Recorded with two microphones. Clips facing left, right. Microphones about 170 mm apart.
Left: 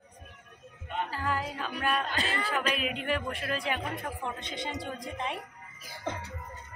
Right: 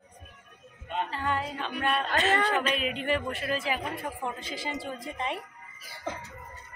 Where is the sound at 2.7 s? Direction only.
Centre (ahead or behind).